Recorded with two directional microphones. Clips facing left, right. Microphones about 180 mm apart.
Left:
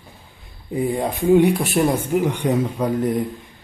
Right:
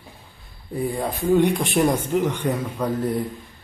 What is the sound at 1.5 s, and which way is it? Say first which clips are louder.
Speech: left 2 dB; 5° left (ahead or behind).